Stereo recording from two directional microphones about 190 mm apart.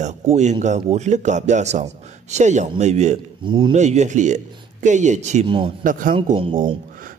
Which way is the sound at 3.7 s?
35° right (ahead or behind).